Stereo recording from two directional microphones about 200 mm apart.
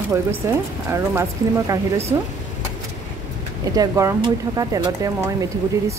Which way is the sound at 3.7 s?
15° right (ahead or behind).